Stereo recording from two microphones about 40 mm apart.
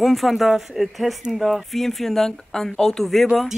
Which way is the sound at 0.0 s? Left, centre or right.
Centre.